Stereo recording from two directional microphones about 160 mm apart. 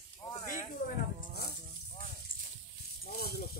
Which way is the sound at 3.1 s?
75° left (ahead or behind).